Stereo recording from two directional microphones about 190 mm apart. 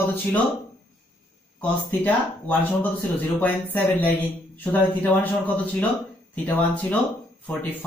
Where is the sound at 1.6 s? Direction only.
10° left (ahead or behind).